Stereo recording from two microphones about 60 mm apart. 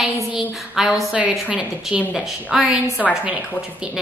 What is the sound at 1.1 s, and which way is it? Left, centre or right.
Speech, right.